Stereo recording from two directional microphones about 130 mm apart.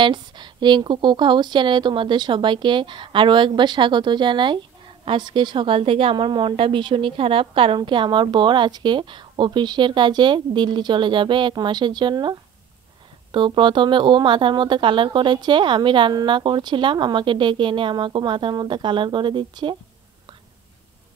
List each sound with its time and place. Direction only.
0.0 s a woman's voice: 35° right (ahead or behind)